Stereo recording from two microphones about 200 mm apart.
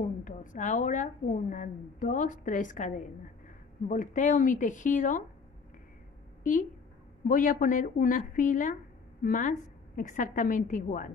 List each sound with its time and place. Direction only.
0.2 s a woman's voice: 40° left (ahead or behind)
7.2 s a woman's voice: 40° left (ahead or behind)